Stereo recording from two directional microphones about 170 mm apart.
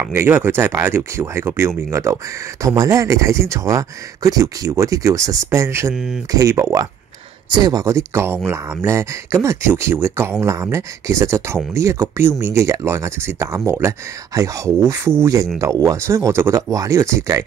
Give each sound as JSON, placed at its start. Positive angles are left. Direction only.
{"t": 0.0, "sound": "speech", "side_deg": -10}